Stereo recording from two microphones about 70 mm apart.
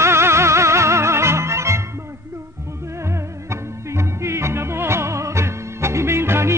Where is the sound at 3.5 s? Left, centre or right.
Right.